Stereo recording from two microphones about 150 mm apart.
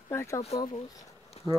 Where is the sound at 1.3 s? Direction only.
45° left (ahead or behind).